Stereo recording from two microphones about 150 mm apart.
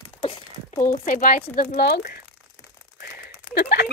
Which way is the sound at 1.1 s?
70° left (ahead or behind).